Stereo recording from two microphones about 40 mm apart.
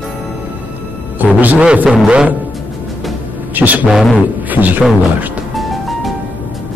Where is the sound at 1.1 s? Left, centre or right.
Right.